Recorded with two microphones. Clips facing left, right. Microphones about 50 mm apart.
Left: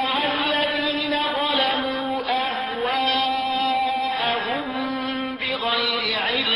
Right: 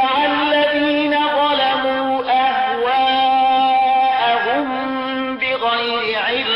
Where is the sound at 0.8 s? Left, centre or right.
Right.